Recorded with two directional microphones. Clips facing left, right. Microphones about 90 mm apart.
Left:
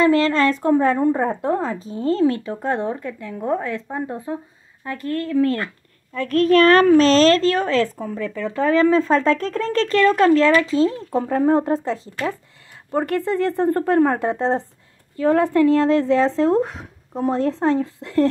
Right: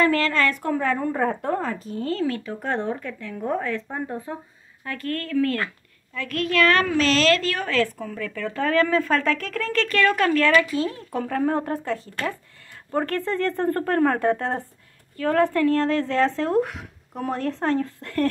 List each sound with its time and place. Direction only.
0.0 s a woman's voice: 25° left (ahead or behind)
6.1 s a woman's voice: 35° left (ahead or behind); by 18.3 s 20° left (ahead or behind)